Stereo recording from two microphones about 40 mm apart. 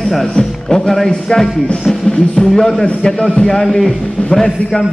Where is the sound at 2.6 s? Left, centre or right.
Centre.